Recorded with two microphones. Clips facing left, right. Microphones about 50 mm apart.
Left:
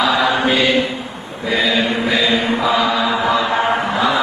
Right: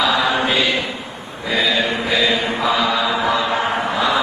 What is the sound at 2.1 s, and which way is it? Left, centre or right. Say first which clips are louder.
Mantra: left 1 dB; left.